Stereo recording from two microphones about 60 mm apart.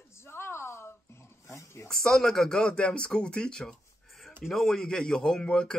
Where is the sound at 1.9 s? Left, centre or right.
Centre.